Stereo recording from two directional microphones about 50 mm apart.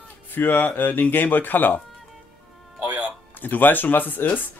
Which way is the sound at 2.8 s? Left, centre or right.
Right.